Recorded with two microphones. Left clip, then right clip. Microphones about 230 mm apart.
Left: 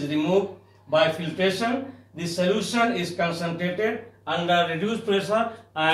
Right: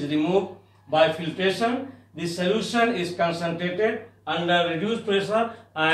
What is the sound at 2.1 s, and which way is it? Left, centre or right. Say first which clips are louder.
A man's voice: left 1 dB; centre.